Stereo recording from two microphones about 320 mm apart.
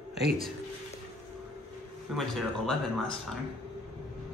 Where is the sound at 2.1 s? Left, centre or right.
Centre.